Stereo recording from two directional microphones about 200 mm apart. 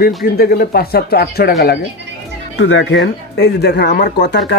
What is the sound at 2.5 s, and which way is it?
A man's voice, 65° left (ahead or behind).